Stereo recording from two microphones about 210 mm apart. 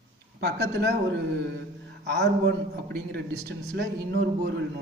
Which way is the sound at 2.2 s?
55° right (ahead or behind).